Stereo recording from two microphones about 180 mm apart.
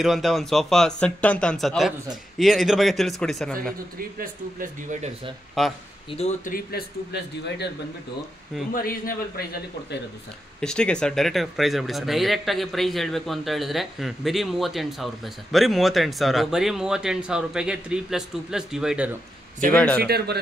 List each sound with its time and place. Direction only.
0.0 s speech: centre (ahead or behind)
4.2 s speech: 45° right (ahead or behind)
5.6 s speech: centre (ahead or behind)
6.0 s speech: 35° left (ahead or behind)
6.5 s speech: 65° left (ahead or behind)
8.7 s a man's voice: 55° left (ahead or behind)
10.6 s speech: 5° left (ahead or behind)
19.7 s speech: 5° left (ahead or behind)
20.0 s speech: 60° right (ahead or behind)